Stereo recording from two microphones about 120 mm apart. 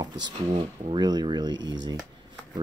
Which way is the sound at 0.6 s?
40° right (ahead or behind).